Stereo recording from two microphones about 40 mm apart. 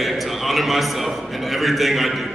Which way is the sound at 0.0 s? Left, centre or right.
Centre.